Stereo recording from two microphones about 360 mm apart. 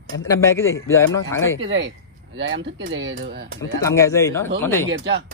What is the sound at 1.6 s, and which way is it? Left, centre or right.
Speech, right.